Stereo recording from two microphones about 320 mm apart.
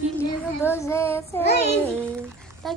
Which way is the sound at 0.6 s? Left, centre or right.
Centre.